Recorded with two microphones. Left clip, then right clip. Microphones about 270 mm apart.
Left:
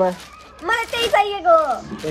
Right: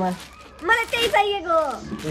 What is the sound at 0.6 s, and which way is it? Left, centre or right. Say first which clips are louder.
Speech: even; centre.